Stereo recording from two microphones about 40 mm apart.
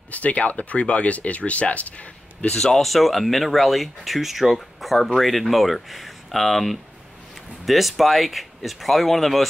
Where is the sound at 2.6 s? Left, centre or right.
Centre.